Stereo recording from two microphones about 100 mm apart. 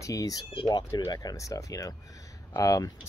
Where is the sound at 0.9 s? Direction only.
40° left (ahead or behind).